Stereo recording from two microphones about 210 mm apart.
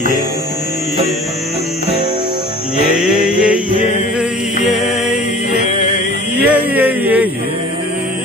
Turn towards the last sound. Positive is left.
turn(degrees=-10)  # may be behind; listen again after turning